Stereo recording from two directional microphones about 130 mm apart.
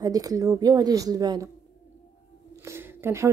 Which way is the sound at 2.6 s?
20° right (ahead or behind).